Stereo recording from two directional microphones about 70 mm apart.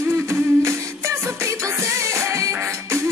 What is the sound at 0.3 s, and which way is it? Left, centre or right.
Music, right.